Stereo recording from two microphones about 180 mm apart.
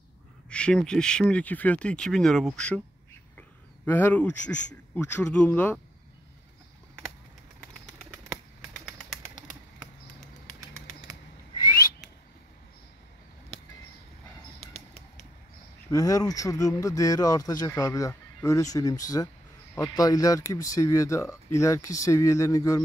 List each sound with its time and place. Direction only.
0.5 s speech: 5° left (ahead or behind)
15.9 s speech: 20° left (ahead or behind)